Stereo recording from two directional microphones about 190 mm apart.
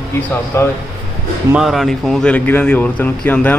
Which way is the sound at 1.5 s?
5° right (ahead or behind).